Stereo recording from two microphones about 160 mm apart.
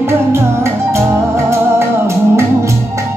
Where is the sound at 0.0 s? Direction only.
15° right (ahead or behind).